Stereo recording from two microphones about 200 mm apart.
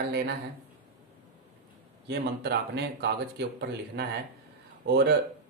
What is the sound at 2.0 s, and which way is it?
Speech, 55° right (ahead or behind).